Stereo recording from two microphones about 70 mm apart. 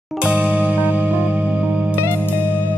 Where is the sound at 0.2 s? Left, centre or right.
Centre.